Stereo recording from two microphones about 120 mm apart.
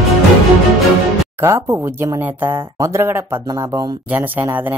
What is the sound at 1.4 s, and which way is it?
Speech, 25° right (ahead or behind).